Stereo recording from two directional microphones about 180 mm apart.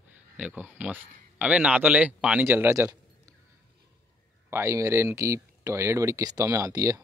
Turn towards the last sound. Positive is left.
turn(degrees=-20)  # may be behind; listen again after turning